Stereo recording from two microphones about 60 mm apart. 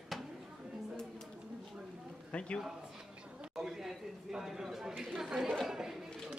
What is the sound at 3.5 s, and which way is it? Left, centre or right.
Speech, centre.